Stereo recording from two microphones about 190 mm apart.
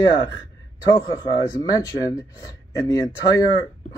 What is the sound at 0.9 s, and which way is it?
Speech, 20° left (ahead or behind).